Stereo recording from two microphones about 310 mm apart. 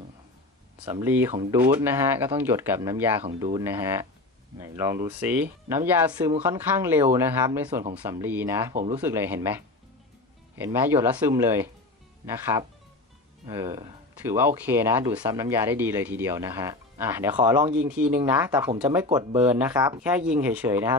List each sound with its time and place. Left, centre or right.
0.8 s speech: centre
1.3 s speech: centre
1.6 s speech: centre
10.6 s speech: centre